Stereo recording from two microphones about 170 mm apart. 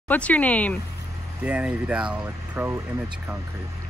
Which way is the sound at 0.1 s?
10° left (ahead or behind).